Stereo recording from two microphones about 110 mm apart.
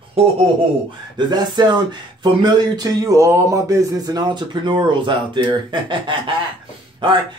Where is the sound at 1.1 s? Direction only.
40° right (ahead or behind).